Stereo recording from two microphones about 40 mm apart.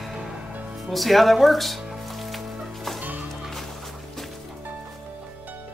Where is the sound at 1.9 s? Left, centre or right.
Centre.